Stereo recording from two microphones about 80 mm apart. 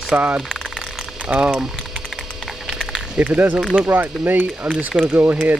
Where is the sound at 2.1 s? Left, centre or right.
Centre.